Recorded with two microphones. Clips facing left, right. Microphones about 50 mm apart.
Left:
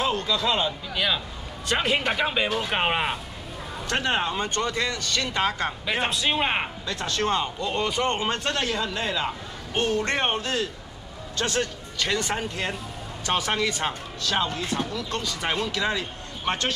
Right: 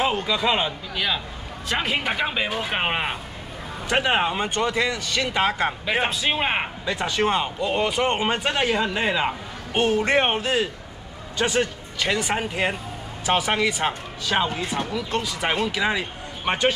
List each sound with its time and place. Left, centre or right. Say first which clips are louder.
0.0 s speech: right 2 dB; centre
0.9 s speech: even; centre
9.8 s speech: right 5 dB; centre